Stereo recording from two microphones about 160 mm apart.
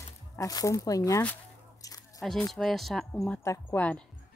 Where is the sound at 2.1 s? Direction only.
Centre (ahead or behind).